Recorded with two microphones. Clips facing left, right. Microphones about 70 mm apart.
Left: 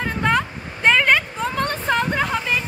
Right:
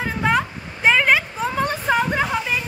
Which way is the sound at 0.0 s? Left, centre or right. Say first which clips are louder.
Even; centre.